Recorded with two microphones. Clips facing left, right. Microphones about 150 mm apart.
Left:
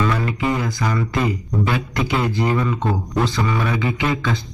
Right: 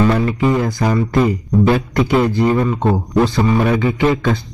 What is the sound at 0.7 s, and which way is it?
Speech, 55° right (ahead or behind).